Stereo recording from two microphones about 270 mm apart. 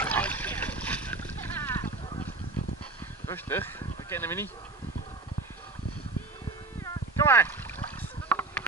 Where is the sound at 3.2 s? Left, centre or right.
Centre.